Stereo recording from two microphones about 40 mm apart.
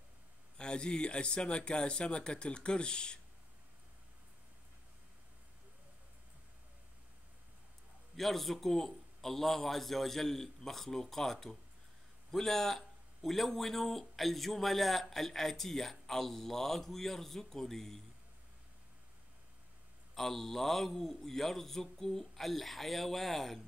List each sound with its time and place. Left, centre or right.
0.6 s speech: left
8.2 s a man's voice: centre
20.2 s a man's voice: centre